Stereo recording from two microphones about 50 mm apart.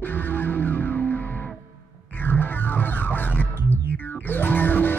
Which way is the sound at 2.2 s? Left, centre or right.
Left.